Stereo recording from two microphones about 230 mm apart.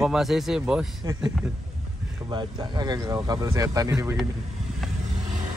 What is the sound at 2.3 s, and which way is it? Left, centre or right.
Speech, centre.